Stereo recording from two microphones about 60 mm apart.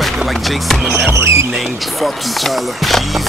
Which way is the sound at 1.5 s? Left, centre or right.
Centre.